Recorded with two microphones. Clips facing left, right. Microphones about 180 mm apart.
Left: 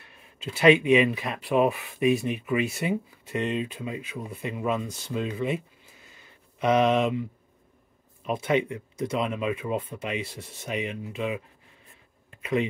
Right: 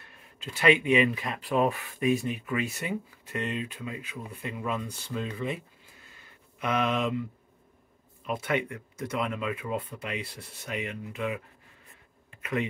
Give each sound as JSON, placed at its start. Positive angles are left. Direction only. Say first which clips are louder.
{"t": 0.5, "sound": "speech", "louder": "left 5 dB", "side_deg": 20}
{"t": 6.6, "sound": "speech", "louder": "left 6 dB", "side_deg": 20}
{"t": 8.3, "sound": "speech", "louder": "left 4 dB", "side_deg": 25}